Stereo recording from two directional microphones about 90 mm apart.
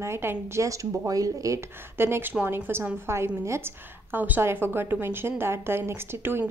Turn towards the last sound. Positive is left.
turn(degrees=-25)  # may be behind; listen again after turning